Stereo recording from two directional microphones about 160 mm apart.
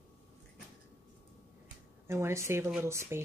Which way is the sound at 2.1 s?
15° right (ahead or behind).